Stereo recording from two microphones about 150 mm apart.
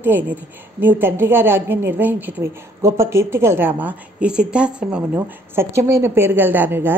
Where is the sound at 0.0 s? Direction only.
15° right (ahead or behind).